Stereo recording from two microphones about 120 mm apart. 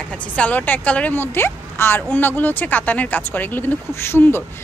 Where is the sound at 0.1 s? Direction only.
10° left (ahead or behind).